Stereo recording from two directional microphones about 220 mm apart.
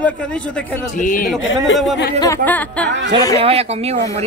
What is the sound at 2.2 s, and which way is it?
Speech, 10° left (ahead or behind).